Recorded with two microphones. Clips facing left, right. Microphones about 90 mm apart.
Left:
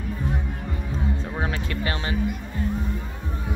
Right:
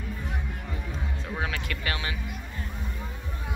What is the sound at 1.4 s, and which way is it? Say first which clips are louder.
Music: left 3 dB; 30° left (ahead or behind).